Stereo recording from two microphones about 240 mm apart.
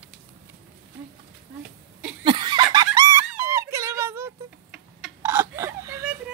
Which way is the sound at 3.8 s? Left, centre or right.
Centre.